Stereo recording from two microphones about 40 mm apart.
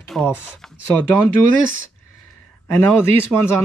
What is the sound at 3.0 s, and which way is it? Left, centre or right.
Speech, left.